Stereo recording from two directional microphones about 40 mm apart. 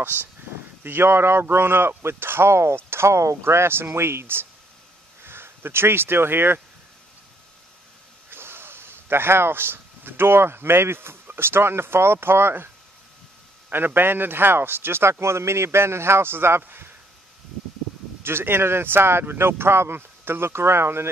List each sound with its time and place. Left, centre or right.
0.8 s speech: right
1.4 s speech: right
8.3 s speech: right
13.7 s speech: right
16.6 s speech: right
18.2 s speech: right